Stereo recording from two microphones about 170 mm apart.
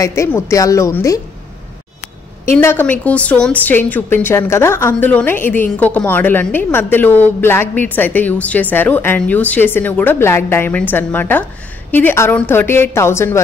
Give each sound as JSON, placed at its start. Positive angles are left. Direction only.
{"t": 0.0, "sound": "a woman's voice", "side_deg": 15}
{"t": 2.4, "sound": "a woman's voice", "side_deg": 15}